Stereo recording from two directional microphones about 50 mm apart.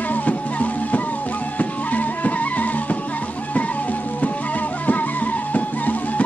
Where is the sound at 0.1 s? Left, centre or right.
Left.